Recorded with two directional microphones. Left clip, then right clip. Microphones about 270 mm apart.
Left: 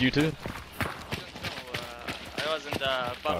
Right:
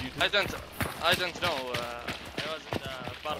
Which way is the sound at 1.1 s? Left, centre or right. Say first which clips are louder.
Right 7 dB; right.